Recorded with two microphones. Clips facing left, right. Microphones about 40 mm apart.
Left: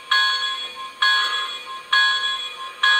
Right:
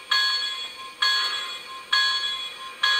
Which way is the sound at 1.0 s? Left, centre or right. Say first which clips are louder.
Left 5 dB; left.